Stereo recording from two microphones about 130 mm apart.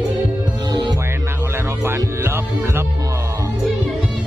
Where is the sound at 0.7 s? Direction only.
35° right (ahead or behind).